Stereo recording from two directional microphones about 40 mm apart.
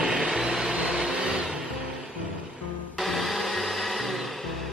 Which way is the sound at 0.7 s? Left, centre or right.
Centre.